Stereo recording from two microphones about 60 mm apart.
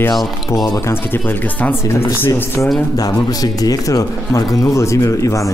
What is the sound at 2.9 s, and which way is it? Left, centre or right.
Speech, left.